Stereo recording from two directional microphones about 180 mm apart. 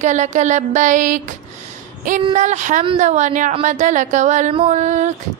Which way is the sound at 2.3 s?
40° right (ahead or behind).